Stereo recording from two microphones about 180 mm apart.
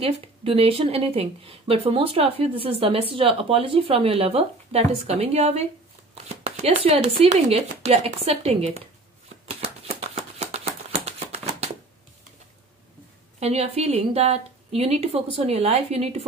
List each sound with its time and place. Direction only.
0.0 s speech: 30° right (ahead or behind)
9.5 s a sound: 35° right (ahead or behind)
13.4 s speech: 35° right (ahead or behind)